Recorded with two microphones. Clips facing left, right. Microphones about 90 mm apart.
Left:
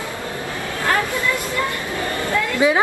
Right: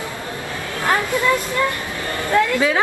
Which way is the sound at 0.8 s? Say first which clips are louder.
Right 1 dB; 20° right (ahead or behind).